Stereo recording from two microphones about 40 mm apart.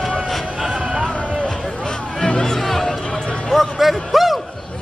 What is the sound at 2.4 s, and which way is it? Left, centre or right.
Music, centre.